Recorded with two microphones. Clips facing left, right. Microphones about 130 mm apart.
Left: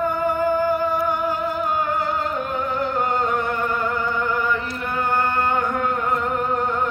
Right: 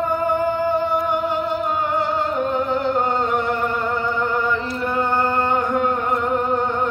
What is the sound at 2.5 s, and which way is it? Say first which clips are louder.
Music: right 4 dB; 30° right (ahead or behind).